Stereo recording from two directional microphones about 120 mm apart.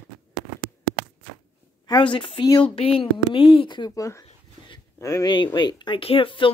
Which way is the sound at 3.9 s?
25° left (ahead or behind).